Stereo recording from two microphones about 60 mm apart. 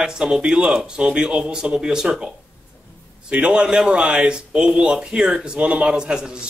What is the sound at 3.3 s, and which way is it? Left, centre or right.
Speech, centre.